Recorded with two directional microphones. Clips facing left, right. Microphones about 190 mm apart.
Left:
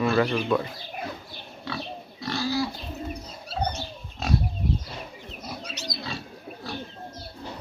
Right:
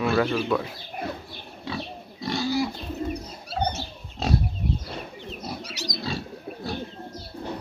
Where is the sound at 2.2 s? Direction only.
20° right (ahead or behind).